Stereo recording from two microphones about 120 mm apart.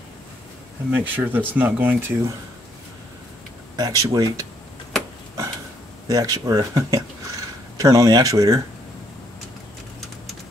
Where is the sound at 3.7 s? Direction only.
30° right (ahead or behind).